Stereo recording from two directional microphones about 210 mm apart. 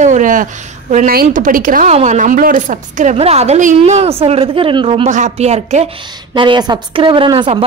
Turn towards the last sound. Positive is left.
turn(degrees=-25)  # may be behind; listen again after turning